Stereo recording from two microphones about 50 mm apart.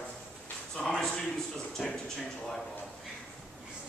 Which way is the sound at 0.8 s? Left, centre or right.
Left.